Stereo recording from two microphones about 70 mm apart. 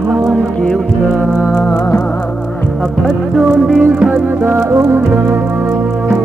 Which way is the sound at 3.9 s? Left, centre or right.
Centre.